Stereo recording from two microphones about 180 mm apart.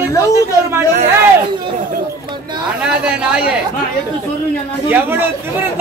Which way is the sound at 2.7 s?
5° right (ahead or behind).